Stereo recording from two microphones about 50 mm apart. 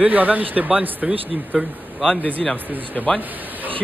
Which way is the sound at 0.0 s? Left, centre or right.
Right.